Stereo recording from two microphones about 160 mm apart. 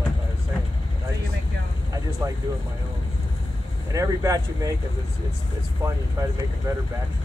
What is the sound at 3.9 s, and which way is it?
Speech, 20° right (ahead or behind).